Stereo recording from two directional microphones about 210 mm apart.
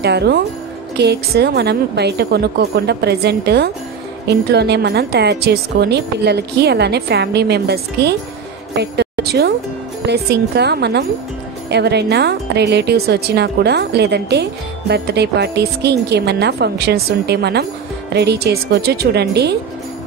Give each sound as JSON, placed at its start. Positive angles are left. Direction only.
{"t": 0.0, "sound": "a woman's voice", "side_deg": -50}